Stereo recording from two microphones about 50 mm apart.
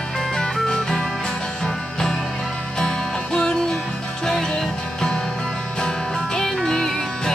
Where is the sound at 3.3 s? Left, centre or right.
Centre.